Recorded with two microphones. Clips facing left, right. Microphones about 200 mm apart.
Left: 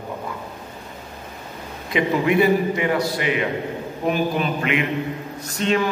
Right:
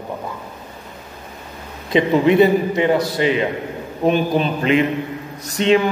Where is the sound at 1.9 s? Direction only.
25° right (ahead or behind).